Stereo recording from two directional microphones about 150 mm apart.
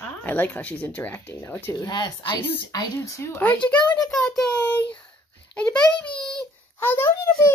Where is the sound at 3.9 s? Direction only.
5° left (ahead or behind).